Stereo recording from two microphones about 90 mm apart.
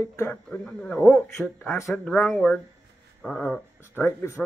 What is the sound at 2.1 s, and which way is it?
Speech, 5° left (ahead or behind).